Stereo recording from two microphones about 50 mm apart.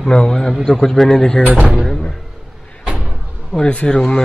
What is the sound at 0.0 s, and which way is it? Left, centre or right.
A man's voice, centre.